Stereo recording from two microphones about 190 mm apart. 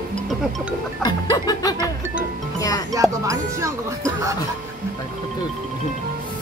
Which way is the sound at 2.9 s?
15° right (ahead or behind).